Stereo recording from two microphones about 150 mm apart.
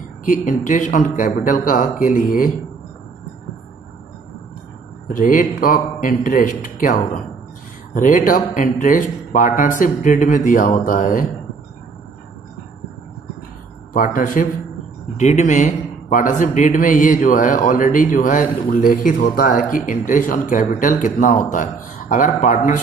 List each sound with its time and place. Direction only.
0.2 s a man's voice: 60° left (ahead or behind)
5.0 s a man's voice: 65° left (ahead or behind)
13.9 s a man's voice: 70° left (ahead or behind)
15.1 s a man's voice: 50° left (ahead or behind)